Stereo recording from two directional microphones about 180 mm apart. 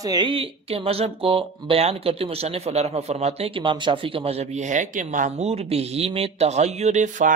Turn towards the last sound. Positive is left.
turn(degrees=-45)  # may be behind; listen again after turning